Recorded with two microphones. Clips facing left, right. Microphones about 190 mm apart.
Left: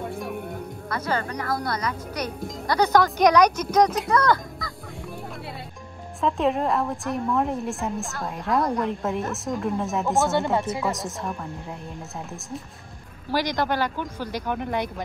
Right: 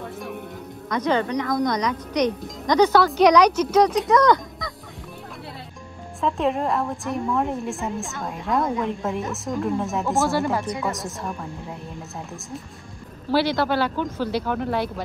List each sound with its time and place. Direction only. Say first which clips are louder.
0.1 s music: left 2 dB; centre (ahead or behind)
0.8 s speech: right 6 dB; 5° left (ahead or behind)
6.2 s a woman's voice: even; centre (ahead or behind)
10.3 s speech: even; 20° left (ahead or behind)
10.6 s a woman's voice: even; centre (ahead or behind)
13.3 s speech: right 4 dB; 15° left (ahead or behind)